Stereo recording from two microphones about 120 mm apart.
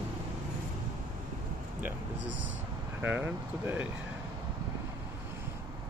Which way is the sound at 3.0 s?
15° right (ahead or behind).